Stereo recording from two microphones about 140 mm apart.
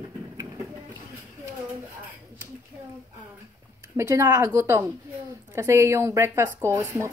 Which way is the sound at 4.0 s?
20° right (ahead or behind).